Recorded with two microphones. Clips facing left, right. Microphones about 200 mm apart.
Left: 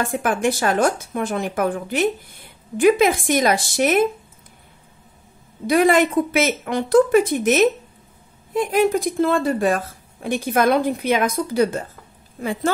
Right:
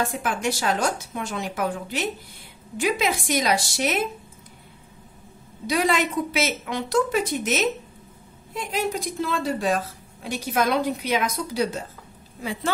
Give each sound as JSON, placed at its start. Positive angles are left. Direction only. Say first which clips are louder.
{"t": 0.2, "sound": "a woman's voice", "louder": "left 6 dB", "side_deg": 55}
{"t": 5.7, "sound": "a woman's voice", "louder": "left 7 dB", "side_deg": 55}